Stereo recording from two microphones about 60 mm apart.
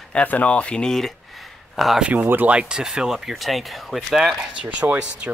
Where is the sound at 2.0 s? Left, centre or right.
Right.